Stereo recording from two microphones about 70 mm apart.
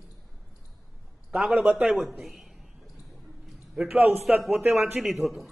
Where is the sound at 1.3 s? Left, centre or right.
Centre.